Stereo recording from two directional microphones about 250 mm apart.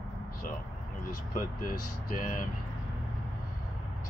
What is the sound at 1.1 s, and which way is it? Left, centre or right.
Speech, left.